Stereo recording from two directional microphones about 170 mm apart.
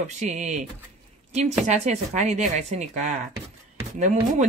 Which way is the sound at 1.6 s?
40° right (ahead or behind).